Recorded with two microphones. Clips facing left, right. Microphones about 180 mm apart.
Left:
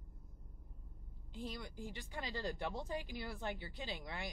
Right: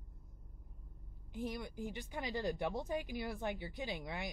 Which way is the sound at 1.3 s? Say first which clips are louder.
Right 5 dB; 20° right (ahead or behind).